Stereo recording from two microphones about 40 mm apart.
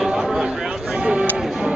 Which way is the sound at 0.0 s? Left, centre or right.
Centre.